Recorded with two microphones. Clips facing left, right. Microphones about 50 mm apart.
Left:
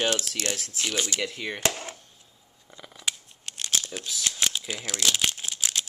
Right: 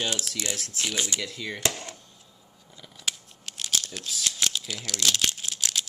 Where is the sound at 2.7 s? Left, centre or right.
Left.